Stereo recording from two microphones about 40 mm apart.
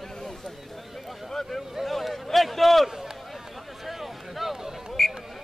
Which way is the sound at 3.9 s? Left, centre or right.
Centre.